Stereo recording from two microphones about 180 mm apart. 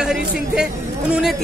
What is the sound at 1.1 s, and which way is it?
Speech, 5° right (ahead or behind).